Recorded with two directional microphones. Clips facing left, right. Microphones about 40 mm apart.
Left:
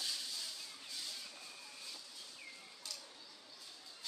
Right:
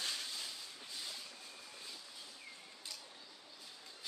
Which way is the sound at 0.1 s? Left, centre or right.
Right.